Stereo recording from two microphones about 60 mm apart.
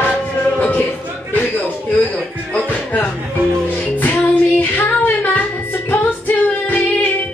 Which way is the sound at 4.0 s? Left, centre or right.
Left.